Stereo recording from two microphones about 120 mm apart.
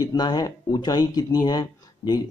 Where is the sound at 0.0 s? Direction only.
30° left (ahead or behind).